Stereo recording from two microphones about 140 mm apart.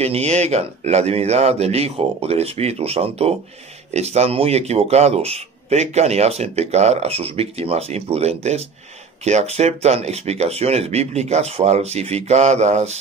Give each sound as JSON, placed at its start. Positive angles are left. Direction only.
{"t": 0.0, "sound": "speech", "side_deg": -50}